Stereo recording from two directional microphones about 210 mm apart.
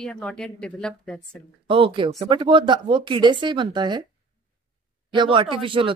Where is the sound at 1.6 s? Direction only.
25° right (ahead or behind).